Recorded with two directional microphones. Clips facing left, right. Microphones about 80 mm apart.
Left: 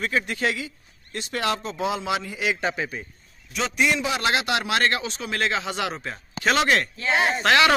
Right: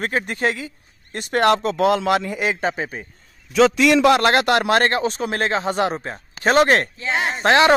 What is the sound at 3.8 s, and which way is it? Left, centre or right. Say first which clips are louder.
Speech: right 6 dB; right.